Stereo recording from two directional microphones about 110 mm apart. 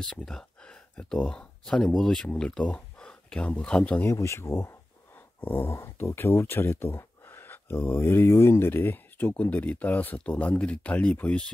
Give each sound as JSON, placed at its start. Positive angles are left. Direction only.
{"t": 0.0, "sound": "speech", "side_deg": 5}
{"t": 4.1, "sound": "speech", "side_deg": 25}